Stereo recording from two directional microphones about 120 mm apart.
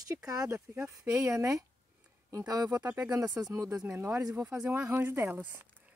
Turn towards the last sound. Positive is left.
turn(degrees=-15)  # may be behind; listen again after turning